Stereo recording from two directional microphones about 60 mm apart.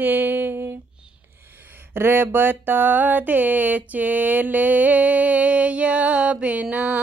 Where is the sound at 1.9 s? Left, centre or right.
Right.